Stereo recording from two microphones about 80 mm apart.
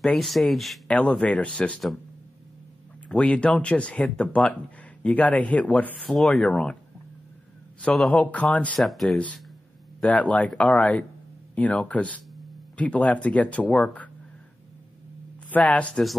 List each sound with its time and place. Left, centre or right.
0.0 s speech: centre
3.1 s speech: centre
6.0 s speech: centre
6.4 s speech: centre
8.1 s speech: centre
8.7 s speech: centre
10.0 s speech: centre
15.6 s speech: centre